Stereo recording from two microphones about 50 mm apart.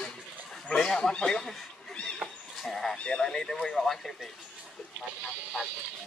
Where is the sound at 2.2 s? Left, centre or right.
Right.